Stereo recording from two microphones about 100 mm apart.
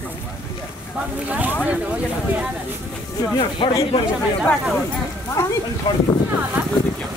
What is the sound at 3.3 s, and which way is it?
Speech, 50° left (ahead or behind).